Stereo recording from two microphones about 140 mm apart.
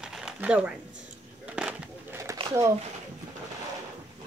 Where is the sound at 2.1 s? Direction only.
20° right (ahead or behind).